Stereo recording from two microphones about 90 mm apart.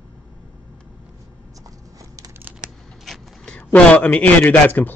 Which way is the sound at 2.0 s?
40° right (ahead or behind).